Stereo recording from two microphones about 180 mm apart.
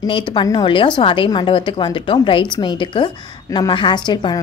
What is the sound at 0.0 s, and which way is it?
A woman's voice, 30° left (ahead or behind).